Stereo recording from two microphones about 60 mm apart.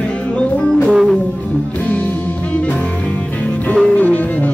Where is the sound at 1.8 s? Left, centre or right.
Left.